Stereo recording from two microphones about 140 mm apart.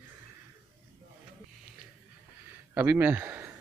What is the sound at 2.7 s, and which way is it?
Speech, 15° right (ahead or behind).